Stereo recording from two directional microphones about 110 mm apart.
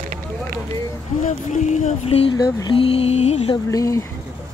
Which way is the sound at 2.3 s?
40° left (ahead or behind).